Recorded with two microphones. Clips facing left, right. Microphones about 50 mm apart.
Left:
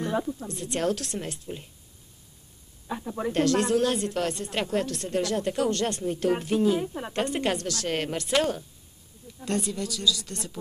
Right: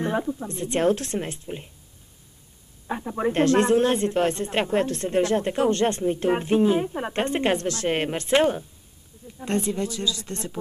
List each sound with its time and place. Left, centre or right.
0.0 s speech: right
2.9 s speech: right